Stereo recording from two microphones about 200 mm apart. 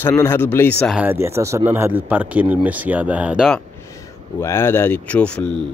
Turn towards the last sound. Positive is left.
turn(degrees=5)  # may be behind; listen again after turning